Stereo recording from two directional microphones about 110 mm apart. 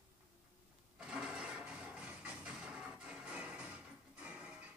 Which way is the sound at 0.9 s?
10° right (ahead or behind).